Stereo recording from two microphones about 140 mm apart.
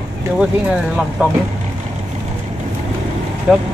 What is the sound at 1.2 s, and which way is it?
Speech, 10° right (ahead or behind).